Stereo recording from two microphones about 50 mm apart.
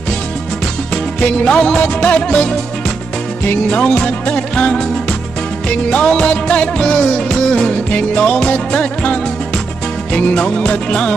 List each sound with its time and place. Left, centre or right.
1.2 s music: left
3.4 s music: left
5.9 s music: centre
6.8 s music: centre
7.9 s music: left